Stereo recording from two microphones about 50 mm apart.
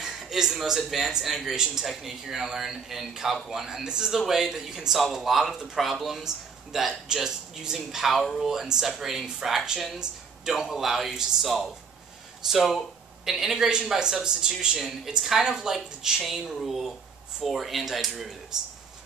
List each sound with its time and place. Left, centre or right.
0.0 s speech: centre
12.5 s a sound: centre
13.3 s speech: centre
14.8 s speech: centre